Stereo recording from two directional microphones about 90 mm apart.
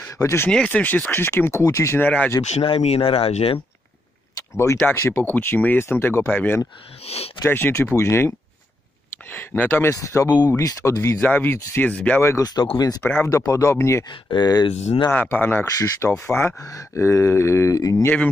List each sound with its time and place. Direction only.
0.2 s speech: 30° left (ahead or behind)
0.5 s speech: 10° left (ahead or behind); by 2.0 s 35° left (ahead or behind)
2.0 s speech: 15° left (ahead or behind)
2.6 s speech: 90° left
4.4 s speech: 35° left (ahead or behind)
9.9 s speech: 35° left (ahead or behind)
11.1 s speech: 20° left (ahead or behind)
12.2 s speech: 30° left (ahead or behind)
12.7 s speech: 45° left (ahead or behind)
13.0 s speech: 25° left (ahead or behind)
13.3 s speech: 40° left (ahead or behind)
14.0 s speech: 50° left (ahead or behind)
15.0 s speech: 20° left (ahead or behind)
15.6 s speech: 35° left (ahead or behind)